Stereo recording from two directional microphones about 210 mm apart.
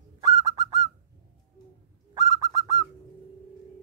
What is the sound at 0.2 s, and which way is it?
Bird, 15° right (ahead or behind).